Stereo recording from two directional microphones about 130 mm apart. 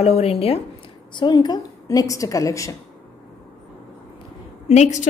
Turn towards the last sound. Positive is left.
turn(degrees=60)  # may be behind; listen again after turning